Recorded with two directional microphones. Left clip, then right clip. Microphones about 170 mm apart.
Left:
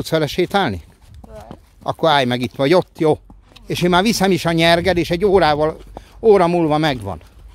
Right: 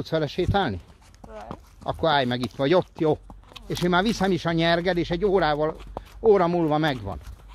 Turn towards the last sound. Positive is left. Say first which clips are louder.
# left 6 dB
turn(degrees=50)  # may be behind; listen again after turning